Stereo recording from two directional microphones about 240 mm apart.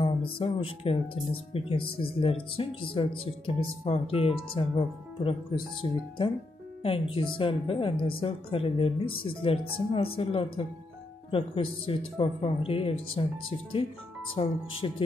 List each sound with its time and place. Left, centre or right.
0.4 s speech: left
14.3 s speech: left